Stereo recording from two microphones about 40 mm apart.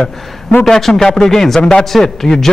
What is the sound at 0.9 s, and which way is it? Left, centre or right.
Speech, centre.